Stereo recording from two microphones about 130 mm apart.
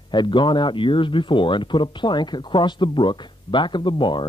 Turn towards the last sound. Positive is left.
turn(degrees=40)  # may be behind; listen again after turning